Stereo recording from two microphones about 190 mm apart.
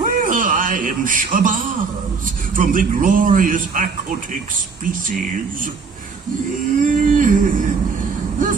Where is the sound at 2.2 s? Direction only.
45° right (ahead or behind).